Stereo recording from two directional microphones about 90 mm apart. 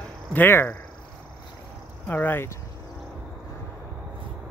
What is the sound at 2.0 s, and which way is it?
Speech, 20° left (ahead or behind).